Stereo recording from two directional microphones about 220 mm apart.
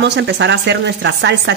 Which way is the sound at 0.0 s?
50° right (ahead or behind).